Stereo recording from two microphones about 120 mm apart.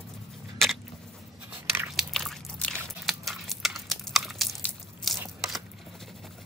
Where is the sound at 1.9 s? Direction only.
Centre (ahead or behind).